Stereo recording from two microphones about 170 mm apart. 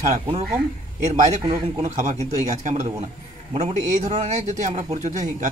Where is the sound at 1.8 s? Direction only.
45° right (ahead or behind).